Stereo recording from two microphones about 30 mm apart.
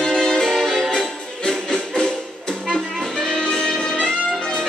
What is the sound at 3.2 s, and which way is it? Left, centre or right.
Music, left.